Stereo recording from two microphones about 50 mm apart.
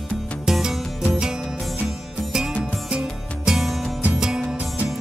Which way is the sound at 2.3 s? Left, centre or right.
Centre.